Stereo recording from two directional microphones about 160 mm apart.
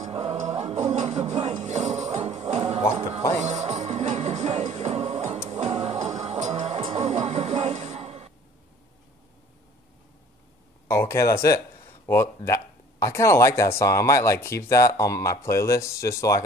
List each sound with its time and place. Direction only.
0.1 s music: 40° right (ahead or behind)
10.9 s speech: 15° left (ahead or behind)